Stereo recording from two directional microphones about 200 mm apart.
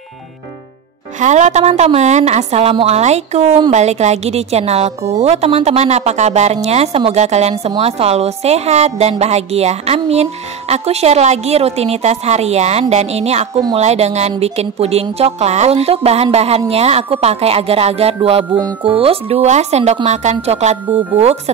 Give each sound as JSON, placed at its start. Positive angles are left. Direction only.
{"t": 1.2, "sound": "speech", "side_deg": -35}